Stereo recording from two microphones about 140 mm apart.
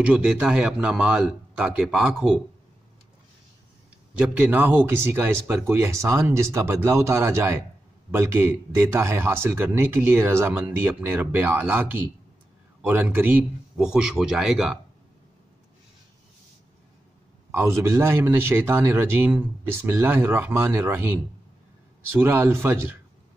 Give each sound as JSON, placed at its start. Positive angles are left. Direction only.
{"t": 0.0, "sound": "a man's voice", "side_deg": -10}
{"t": 4.1, "sound": "a man's voice", "side_deg": -10}
{"t": 17.5, "sound": "speech", "side_deg": -20}